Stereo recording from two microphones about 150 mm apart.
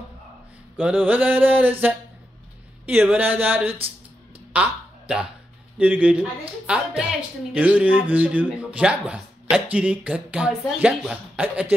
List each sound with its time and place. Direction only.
0.7 s speech: 10° right (ahead or behind)
4.5 s a sound: 10° right (ahead or behind)
5.8 s speech: 10° right (ahead or behind)